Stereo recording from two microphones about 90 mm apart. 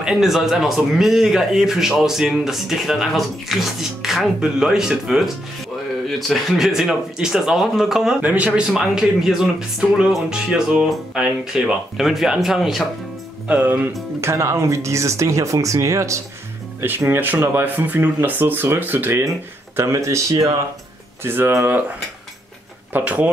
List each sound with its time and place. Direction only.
0.0 s a man's voice: 5° right (ahead or behind)
8.2 s a man's voice: 15° right (ahead or behind)
13.5 s speech: 15° right (ahead or behind)
14.2 s speech: 30° right (ahead or behind)
16.8 s speech: 25° right (ahead or behind)
19.8 s speech: 35° right (ahead or behind)
21.2 s speech: 25° right (ahead or behind)
22.9 s speech: 15° right (ahead or behind)